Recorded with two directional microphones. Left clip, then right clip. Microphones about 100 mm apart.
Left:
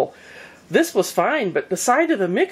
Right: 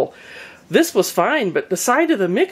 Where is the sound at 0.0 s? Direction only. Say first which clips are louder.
Right 1 dB; 25° right (ahead or behind).